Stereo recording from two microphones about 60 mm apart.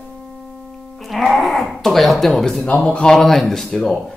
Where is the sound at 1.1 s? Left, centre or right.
Centre.